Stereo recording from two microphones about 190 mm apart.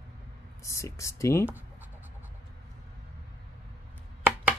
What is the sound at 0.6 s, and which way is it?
Speech, 15° left (ahead or behind).